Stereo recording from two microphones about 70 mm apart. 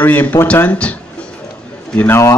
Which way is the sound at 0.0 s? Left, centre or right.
Left.